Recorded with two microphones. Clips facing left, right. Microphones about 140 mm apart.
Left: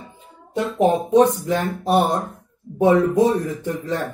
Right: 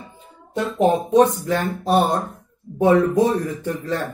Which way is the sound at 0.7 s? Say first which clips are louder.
Even; 5° left (ahead or behind).